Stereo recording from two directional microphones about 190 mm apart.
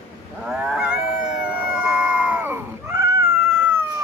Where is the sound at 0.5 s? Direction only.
5° right (ahead or behind).